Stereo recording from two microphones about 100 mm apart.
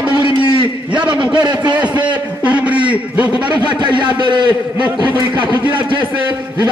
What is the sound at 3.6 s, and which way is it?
Speech, 50° right (ahead or behind).